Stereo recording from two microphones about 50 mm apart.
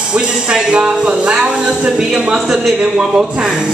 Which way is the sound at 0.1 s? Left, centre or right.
Centre.